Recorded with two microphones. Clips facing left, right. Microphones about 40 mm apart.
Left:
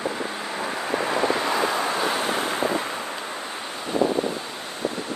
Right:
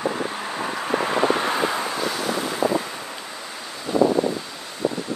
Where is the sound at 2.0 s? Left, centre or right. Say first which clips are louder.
Left 1 dB; left.